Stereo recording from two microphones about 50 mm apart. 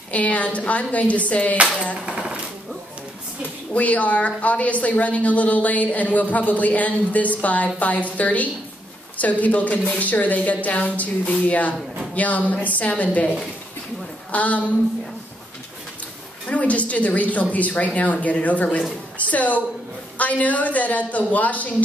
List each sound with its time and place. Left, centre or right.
0.1 s a woman's voice: left
3.7 s a woman's voice: left
14.3 s a woman's voice: left
16.4 s a woman's voice: left